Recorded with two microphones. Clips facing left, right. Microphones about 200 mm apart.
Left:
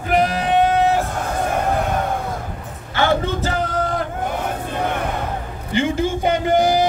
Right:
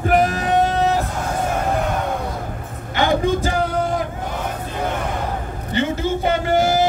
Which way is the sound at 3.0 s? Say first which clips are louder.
Right 1 dB; 15° right (ahead or behind).